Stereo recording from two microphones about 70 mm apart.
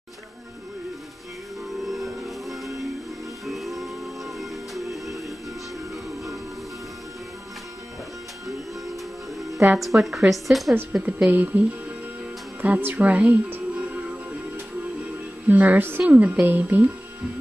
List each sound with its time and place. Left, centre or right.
1.9 s music: centre
9.8 s a woman's voice: centre
10.9 s a woman's voice: centre
12.6 s speech: right
15.4 s music: right
16.0 s a woman's voice: centre